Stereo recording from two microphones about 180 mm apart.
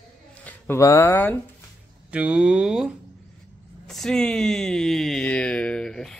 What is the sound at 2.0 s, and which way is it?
Speech, 5° right (ahead or behind).